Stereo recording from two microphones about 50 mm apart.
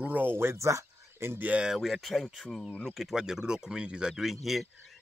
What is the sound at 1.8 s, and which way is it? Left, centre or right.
Speech, centre.